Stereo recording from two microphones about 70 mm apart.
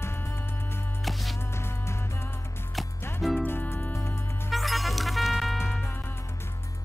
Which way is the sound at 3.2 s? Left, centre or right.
Centre.